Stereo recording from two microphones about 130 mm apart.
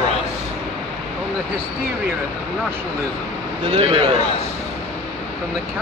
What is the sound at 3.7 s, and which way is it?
Speech, 45° right (ahead or behind).